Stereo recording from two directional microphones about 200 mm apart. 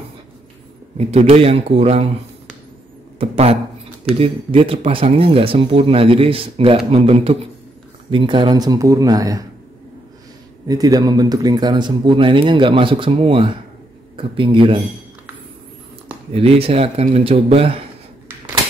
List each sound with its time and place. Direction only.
0.9 s speech: 30° right (ahead or behind)
3.2 s speech: 30° right (ahead or behind)
10.7 s speech: 20° right (ahead or behind)
16.3 s speech: 30° right (ahead or behind)